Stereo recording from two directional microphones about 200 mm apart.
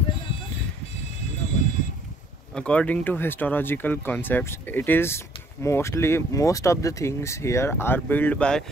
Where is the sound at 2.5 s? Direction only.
5° left (ahead or behind).